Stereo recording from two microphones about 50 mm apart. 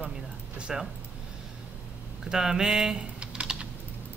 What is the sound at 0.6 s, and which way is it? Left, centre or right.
Speech, centre.